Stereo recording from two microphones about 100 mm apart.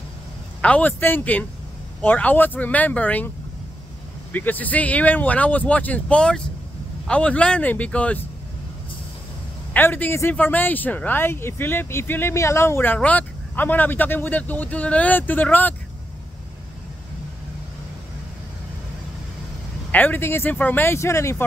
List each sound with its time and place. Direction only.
0.6 s speech: 15° left (ahead or behind)
4.3 s speech: 15° left (ahead or behind)
9.8 s speech: 20° left (ahead or behind)
19.9 s speech: 15° left (ahead or behind)